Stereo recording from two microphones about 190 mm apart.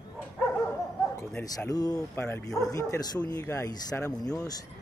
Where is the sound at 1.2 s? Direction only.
10° left (ahead or behind).